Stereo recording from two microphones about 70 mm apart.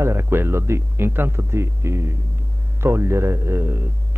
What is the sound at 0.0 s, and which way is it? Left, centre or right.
A man's voice, right.